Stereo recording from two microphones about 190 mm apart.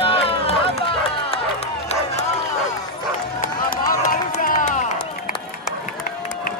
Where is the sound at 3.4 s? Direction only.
50° left (ahead or behind).